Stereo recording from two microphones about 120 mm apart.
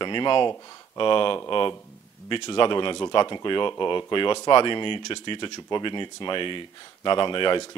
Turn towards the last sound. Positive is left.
turn(degrees=40)  # may be behind; listen again after turning